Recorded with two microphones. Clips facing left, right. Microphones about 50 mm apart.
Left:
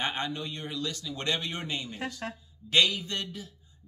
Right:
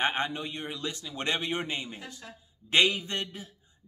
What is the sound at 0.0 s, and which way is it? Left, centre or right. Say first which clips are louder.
Speech: right 3 dB; right.